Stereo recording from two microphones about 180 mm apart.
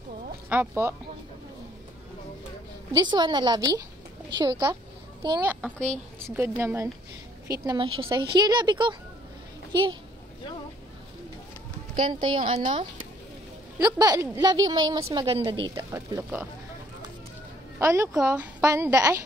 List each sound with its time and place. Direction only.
0.5 s a woman's voice: 10° right (ahead or behind)
2.9 s a woman's voice: 25° right (ahead or behind)
5.4 s a woman's voice: 10° right (ahead or behind); by 9.9 s 25° right (ahead or behind)
11.9 s a woman's voice: 25° right (ahead or behind)
13.7 s a woman's voice: 20° right (ahead or behind)
15.7 s a woman's voice: 15° right (ahead or behind)
17.7 s a woman's voice: 15° right (ahead or behind)